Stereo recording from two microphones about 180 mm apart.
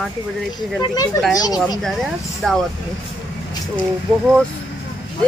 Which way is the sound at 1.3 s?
20° left (ahead or behind).